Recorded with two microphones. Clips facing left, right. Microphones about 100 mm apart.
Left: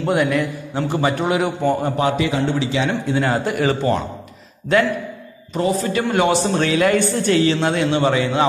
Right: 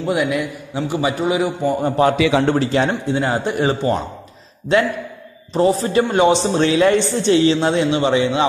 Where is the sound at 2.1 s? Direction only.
90° right.